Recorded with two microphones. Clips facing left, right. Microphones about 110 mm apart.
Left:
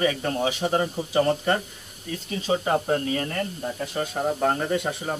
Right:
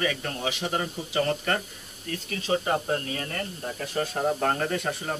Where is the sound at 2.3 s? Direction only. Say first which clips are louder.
Left 2 dB; 15° left (ahead or behind).